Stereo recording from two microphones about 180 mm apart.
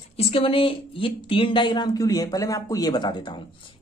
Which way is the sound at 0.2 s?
30° left (ahead or behind).